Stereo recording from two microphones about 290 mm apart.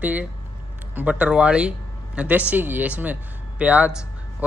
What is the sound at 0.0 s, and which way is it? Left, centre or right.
Speech, centre.